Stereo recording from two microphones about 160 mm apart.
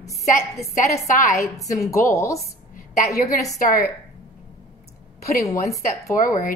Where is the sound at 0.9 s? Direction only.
55° left (ahead or behind).